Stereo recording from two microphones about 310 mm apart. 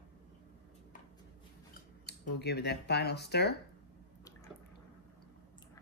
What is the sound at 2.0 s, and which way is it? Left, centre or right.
Speech, left.